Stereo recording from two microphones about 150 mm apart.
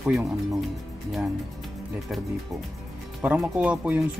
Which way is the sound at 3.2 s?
5° right (ahead or behind).